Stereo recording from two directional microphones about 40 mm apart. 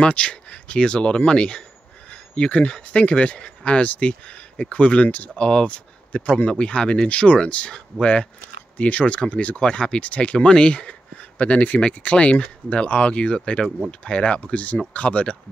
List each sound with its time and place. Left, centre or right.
0.0 s speech: left
8.7 s speech: left
9.7 s speech: left